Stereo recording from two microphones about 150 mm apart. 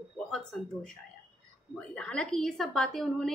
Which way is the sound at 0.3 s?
5° left (ahead or behind).